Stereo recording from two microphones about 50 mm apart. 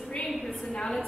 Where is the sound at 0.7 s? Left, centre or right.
Centre.